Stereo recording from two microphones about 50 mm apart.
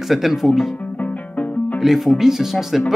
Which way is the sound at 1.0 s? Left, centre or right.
Left.